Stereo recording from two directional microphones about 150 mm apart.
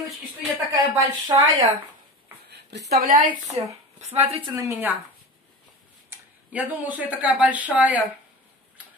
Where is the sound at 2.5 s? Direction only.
90° right.